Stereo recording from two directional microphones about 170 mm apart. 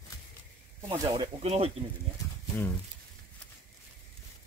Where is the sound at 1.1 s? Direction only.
35° right (ahead or behind).